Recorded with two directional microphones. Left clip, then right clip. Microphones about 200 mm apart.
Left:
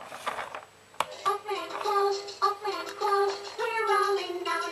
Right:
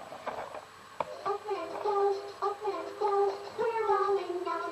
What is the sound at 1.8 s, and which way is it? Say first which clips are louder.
Music: left 2 dB; 30° left (ahead or behind).